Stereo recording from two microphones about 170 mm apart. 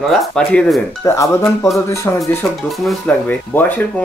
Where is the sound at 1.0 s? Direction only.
20° left (ahead or behind).